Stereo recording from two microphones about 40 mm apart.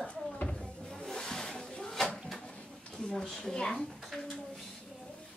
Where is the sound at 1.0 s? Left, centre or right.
Centre.